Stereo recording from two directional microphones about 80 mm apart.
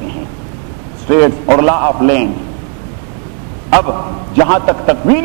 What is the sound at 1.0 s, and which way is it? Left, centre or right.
A man's voice, centre.